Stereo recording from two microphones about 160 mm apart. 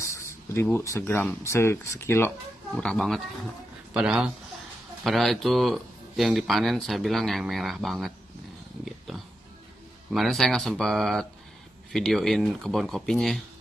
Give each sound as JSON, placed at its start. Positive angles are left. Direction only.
{"t": 0.0, "sound": "speech", "side_deg": 15}
{"t": 2.7, "sound": "speech", "side_deg": 5}
{"t": 8.8, "sound": "wild animals", "side_deg": 0}
{"t": 10.1, "sound": "speech", "side_deg": 0}